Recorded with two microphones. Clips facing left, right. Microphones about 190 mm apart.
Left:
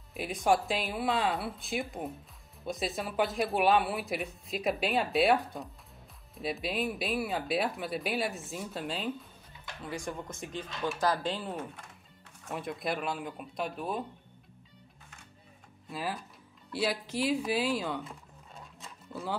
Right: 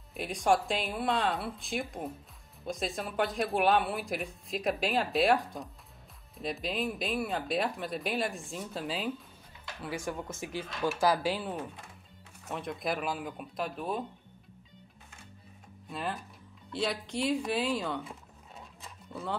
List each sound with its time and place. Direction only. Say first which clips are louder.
0.1 s speech: even; centre (ahead or behind)
12.4 s speech: even; 5° left (ahead or behind)
15.9 s speech: even; 5° left (ahead or behind)